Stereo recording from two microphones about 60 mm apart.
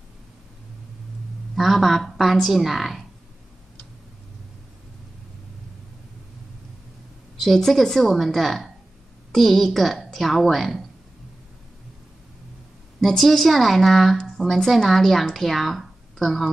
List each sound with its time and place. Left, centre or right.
1.5 s a woman's voice: centre
7.4 s a woman's voice: centre
13.0 s a woman's voice: centre